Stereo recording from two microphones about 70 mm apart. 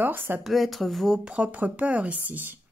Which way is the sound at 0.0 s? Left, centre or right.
Right.